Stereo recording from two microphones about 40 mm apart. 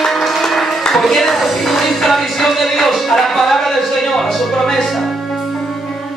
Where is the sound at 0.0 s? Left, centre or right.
Centre.